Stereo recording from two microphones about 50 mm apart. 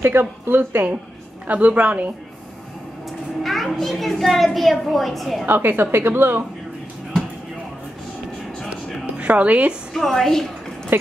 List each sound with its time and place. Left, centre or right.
0.0 s a woman's voice: right
1.5 s a woman's voice: right
3.1 s a child's voice: centre
5.5 s a woman's voice: right
9.2 s speech: right
9.9 s a woman's voice: centre
10.9 s a woman's voice: right